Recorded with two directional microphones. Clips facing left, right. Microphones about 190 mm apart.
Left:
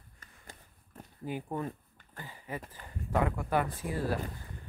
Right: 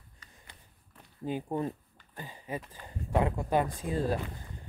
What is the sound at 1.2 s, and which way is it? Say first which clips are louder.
Speech: right 3 dB; 20° right (ahead or behind).